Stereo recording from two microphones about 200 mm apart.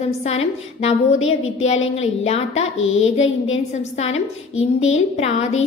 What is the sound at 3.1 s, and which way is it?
Speech, 75° left (ahead or behind).